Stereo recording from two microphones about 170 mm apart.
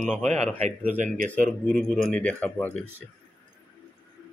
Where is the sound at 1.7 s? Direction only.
5° left (ahead or behind).